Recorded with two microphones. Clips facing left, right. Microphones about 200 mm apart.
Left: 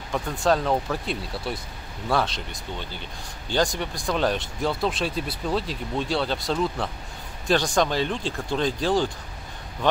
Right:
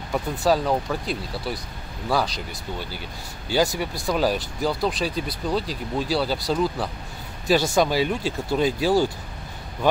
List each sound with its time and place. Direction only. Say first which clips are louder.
0.1 s speech: right 1 dB; 5° right (ahead or behind)